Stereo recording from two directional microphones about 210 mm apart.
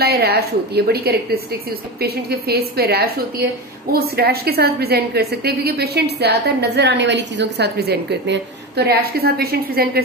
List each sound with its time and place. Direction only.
0.0 s a woman's voice: 50° right (ahead or behind)